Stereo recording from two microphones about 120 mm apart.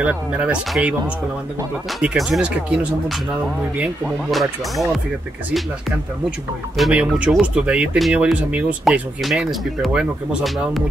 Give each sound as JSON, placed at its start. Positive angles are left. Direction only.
{"t": 0.0, "sound": "speech", "side_deg": -10}
{"t": 4.3, "sound": "speech", "side_deg": 0}
{"t": 6.8, "sound": "speech", "side_deg": -5}